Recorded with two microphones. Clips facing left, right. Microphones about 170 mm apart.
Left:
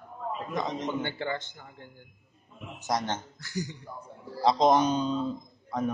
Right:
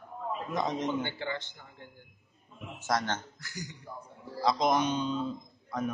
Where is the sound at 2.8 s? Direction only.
20° left (ahead or behind).